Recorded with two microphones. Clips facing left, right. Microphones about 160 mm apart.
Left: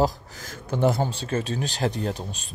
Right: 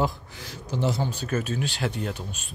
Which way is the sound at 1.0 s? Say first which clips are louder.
Left 1 dB; 30° left (ahead or behind).